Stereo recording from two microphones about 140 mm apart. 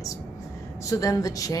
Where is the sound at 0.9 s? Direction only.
25° left (ahead or behind).